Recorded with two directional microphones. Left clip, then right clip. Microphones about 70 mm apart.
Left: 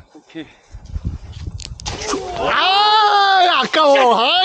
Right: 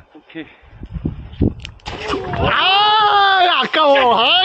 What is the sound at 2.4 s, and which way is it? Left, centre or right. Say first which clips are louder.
Speech: right 1 dB; centre.